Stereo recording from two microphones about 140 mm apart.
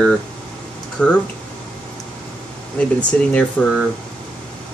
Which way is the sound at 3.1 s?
5° left (ahead or behind).